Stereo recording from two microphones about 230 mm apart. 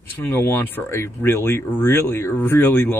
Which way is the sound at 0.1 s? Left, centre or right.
Centre.